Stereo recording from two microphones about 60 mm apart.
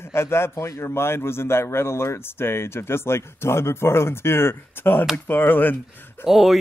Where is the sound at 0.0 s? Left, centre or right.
Left.